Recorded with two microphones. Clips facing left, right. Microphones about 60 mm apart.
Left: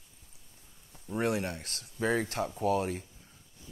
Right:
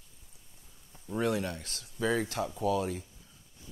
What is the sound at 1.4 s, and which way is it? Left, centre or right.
A man's voice, left.